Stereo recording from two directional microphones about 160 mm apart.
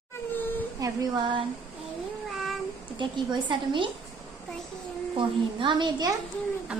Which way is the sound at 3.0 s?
30° right (ahead or behind).